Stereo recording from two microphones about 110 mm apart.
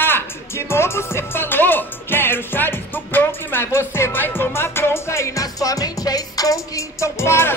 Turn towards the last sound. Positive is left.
turn(degrees=25)  # may be behind; listen again after turning